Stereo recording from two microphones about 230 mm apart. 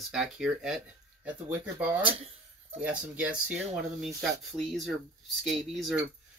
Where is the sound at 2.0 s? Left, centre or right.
Right.